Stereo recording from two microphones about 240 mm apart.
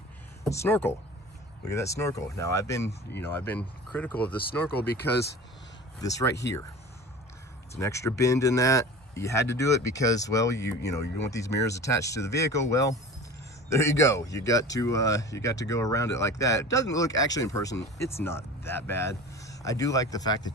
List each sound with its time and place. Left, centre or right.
0.4 s speech: centre
4.4 s speech: left
6.0 s speech: centre
7.8 s speech: centre